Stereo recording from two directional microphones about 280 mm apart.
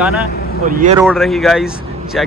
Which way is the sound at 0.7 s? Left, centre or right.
Right.